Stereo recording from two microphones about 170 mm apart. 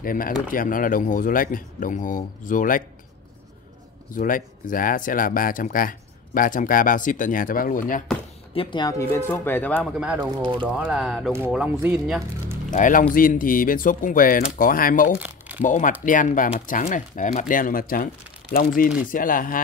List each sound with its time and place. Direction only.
0.0 s speech: 55° left (ahead or behind)
4.1 s speech: 50° left (ahead or behind)
8.5 s speech: 25° left (ahead or behind); by 9.9 s 10° left (ahead or behind)
9.9 s speech: 5° right (ahead or behind)
10.2 s speech: 30° right (ahead or behind)
10.7 s speech: 5° right (ahead or behind)
11.3 s speech: 10° right (ahead or behind)
12.7 s speech: 50° left (ahead or behind)
15.1 s crumpling: 10° right (ahead or behind)
15.6 s speech: 50° left (ahead or behind)